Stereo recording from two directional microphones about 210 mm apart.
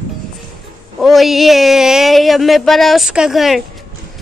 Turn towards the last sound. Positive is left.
turn(degrees=0)  # may be behind; listen again after turning